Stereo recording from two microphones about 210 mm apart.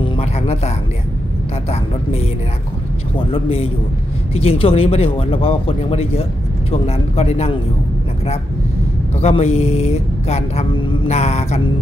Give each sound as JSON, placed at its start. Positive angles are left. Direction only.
{"t": 0.0, "sound": "music", "side_deg": 30}
{"t": 3.2, "sound": "speech", "side_deg": 25}
{"t": 9.2, "sound": "speech", "side_deg": 30}